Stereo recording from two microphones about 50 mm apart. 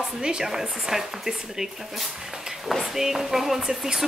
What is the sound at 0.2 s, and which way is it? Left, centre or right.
Speech, centre.